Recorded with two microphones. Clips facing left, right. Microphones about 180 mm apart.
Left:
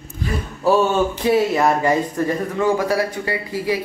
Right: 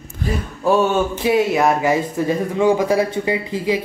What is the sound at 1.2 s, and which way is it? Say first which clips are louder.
A man's voice: right 1 dB; 5° right (ahead or behind).